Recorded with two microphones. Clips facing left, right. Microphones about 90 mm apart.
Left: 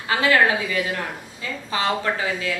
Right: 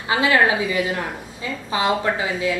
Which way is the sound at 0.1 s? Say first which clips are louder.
Right 1 dB; 20° right (ahead or behind).